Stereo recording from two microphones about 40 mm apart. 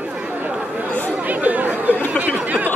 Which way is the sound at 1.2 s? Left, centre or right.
Right.